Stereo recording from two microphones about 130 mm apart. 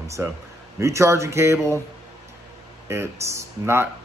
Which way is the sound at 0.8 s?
20° right (ahead or behind).